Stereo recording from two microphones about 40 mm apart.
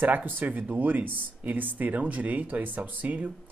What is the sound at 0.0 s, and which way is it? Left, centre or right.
Speech, right.